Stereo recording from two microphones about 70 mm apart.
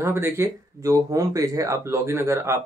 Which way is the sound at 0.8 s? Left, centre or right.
Right.